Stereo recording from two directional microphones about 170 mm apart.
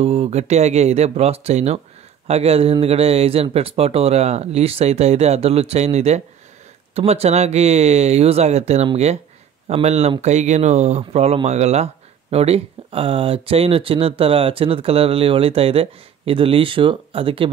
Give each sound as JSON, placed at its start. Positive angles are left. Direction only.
{"t": 0.0, "sound": "speech", "side_deg": -40}